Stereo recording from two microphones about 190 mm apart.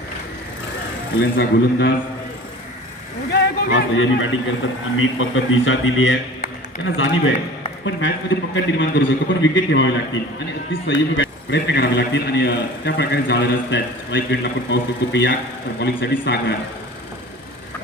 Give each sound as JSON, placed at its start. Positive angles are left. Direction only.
{"t": 1.4, "sound": "a man's voice", "side_deg": 65}
{"t": 3.3, "sound": "a man's voice", "side_deg": 70}